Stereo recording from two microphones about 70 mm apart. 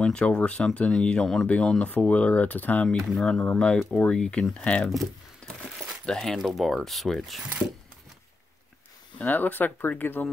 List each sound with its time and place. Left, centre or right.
0.0 s speech: centre
3.1 s speech: centre
3.3 s speech: centre
4.8 s speech: centre
6.3 s speech: centre
9.2 s speech: left